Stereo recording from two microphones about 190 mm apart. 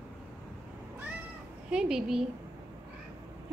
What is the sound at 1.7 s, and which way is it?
Speech, 5° right (ahead or behind).